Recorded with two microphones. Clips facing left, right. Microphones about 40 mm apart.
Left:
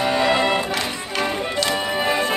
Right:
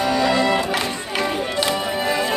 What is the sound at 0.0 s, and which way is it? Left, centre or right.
Music, left.